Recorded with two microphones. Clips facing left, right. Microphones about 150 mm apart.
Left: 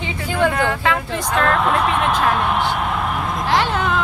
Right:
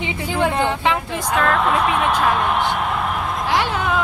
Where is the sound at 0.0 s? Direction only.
25° right (ahead or behind).